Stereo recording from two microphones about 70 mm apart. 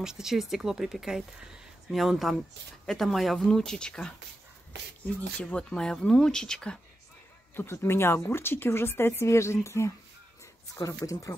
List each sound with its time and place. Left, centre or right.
0.0 s a woman's voice: centre
5.4 s speech: centre
7.5 s a woman's voice: left